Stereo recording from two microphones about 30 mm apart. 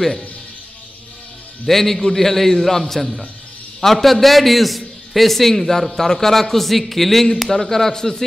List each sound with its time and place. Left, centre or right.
1.7 s a man's voice: centre